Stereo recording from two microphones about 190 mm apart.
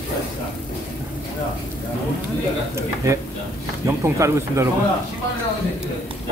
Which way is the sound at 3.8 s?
15° right (ahead or behind).